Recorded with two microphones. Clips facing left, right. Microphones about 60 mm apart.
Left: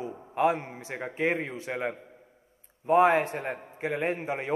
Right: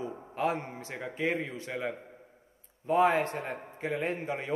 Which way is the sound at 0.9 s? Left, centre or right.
Left.